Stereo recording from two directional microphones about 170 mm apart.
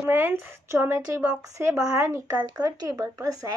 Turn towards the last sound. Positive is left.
turn(degrees=-20)  # may be behind; listen again after turning